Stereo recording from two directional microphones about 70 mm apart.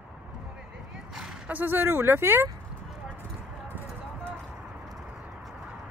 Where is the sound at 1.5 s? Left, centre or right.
Right.